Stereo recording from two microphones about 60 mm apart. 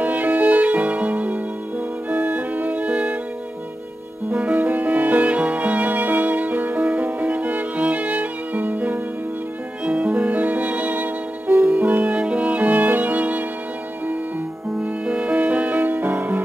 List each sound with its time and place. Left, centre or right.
0.0 s violin: right
2.0 s music: right
4.3 s music: right
14.8 s music: centre